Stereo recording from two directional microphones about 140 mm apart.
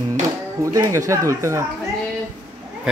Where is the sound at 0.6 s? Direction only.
25° right (ahead or behind).